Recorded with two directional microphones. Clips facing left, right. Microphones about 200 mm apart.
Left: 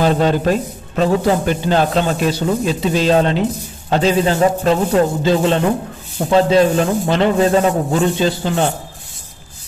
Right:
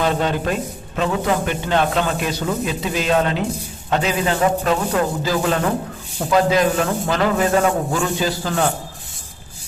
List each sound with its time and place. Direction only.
0.0 s a man's voice: 35° left (ahead or behind)